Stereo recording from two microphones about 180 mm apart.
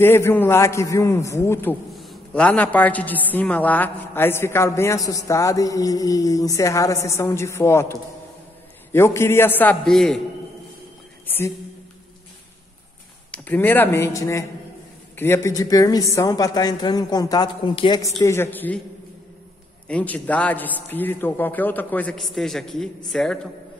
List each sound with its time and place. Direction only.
0.0 s a man's voice: 15° left (ahead or behind)
11.2 s a sound: 10° left (ahead or behind)
13.3 s a man's voice: 10° left (ahead or behind)
18.2 s a man's voice: 15° left (ahead or behind)
19.9 s a man's voice: 5° left (ahead or behind)